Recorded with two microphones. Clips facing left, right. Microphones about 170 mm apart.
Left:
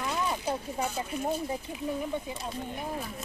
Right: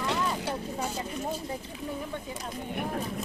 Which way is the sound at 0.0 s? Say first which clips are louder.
Right 1 dB; 85° right.